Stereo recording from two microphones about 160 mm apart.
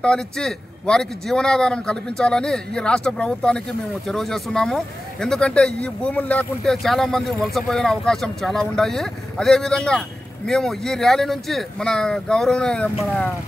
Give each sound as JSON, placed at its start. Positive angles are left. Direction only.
{"t": 0.0, "sound": "speech", "side_deg": 5}